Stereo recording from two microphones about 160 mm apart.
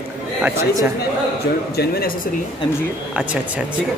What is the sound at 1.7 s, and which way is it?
Speech, 70° left (ahead or behind).